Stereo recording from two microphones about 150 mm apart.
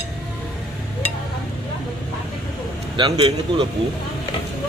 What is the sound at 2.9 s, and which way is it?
Speech, 35° right (ahead or behind).